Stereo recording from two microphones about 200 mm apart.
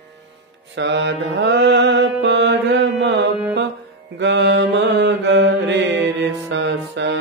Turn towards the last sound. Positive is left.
turn(degrees=-60)  # may be behind; listen again after turning